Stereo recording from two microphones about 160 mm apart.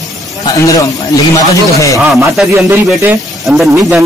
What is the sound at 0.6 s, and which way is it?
Speech, 20° left (ahead or behind).